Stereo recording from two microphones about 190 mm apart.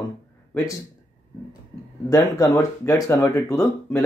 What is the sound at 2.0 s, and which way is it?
Speech, 20° left (ahead or behind).